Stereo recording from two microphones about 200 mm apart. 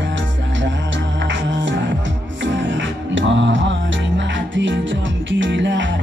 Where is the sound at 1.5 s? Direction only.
65° right (ahead or behind).